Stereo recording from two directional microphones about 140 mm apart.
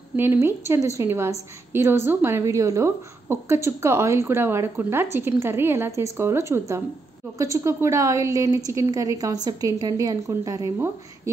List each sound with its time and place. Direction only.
0.1 s a woman's voice: 15° right (ahead or behind)